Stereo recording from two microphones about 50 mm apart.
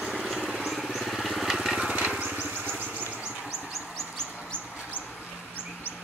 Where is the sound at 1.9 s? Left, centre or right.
Right.